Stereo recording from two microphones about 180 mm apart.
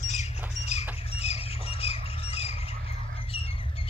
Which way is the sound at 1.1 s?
35° left (ahead or behind).